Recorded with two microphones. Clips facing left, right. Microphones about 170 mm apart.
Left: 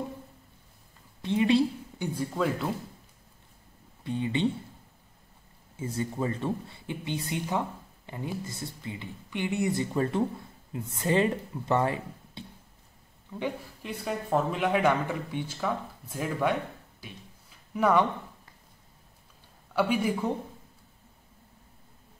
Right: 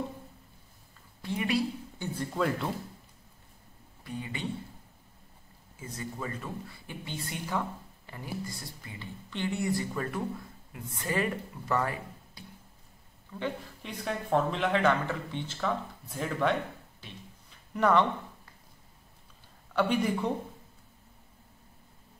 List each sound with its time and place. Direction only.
1.2 s a sound: 25° left (ahead or behind)
2.1 s speech: centre (ahead or behind)
4.0 s speech: 25° left (ahead or behind)
5.8 s speech: 30° left (ahead or behind)
13.3 s speech: 10° left (ahead or behind)
17.0 s a sound: 10° left (ahead or behind)
19.7 s speech: 10° left (ahead or behind)